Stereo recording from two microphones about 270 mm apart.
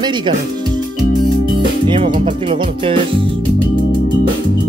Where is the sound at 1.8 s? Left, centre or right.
Centre.